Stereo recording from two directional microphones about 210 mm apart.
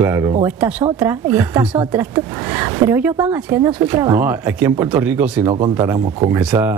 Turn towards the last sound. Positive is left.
turn(degrees=-10)  # may be behind; listen again after turning